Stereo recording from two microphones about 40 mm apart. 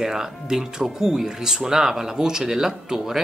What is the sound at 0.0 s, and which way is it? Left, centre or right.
Speech, centre.